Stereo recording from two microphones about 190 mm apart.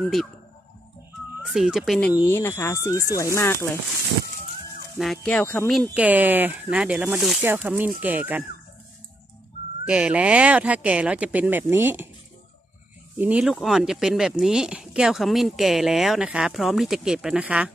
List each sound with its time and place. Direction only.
0.0 s speech: centre (ahead or behind)
1.4 s speech: centre (ahead or behind)
2.1 s speech: 15° left (ahead or behind)
4.9 s speech: centre (ahead or behind)
5.9 s speech: 10° right (ahead or behind)
9.8 s speech: 5° right (ahead or behind)
13.2 s speech: 5° right (ahead or behind)